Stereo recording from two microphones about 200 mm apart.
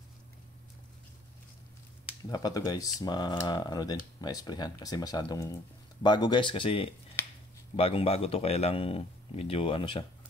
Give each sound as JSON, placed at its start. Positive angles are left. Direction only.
{"t": 2.2, "sound": "speech", "side_deg": 20}
{"t": 7.2, "sound": "finger snapping", "side_deg": 10}
{"t": 7.7, "sound": "speech", "side_deg": 30}